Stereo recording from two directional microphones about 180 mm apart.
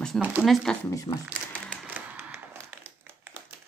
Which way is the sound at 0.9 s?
20° left (ahead or behind).